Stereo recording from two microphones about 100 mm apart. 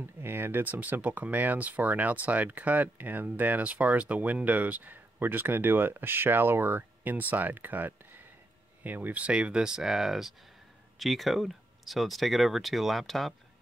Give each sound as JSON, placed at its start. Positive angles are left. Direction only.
{"t": 0.0, "sound": "speech", "side_deg": -20}